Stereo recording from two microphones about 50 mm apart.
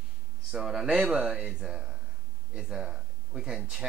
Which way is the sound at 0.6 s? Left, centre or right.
Centre.